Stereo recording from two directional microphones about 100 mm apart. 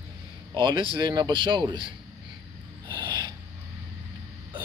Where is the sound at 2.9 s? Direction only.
50° right (ahead or behind).